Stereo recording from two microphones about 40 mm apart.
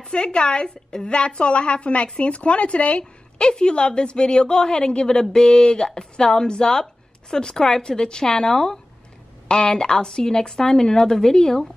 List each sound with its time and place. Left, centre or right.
0.0 s a woman's voice: left
3.3 s a woman's voice: left